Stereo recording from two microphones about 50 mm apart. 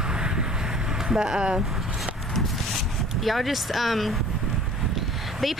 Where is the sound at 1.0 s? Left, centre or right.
Centre.